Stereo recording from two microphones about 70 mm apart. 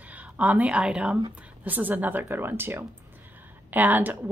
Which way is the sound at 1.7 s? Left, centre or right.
Right.